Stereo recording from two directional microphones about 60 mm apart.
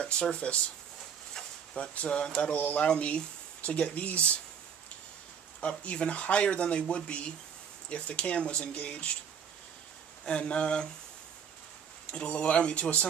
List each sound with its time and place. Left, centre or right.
0.0 s speech: centre
1.3 s a sound: centre
2.4 s speech: left
5.6 s speech: centre
10.2 s speech: centre
12.1 s speech: centre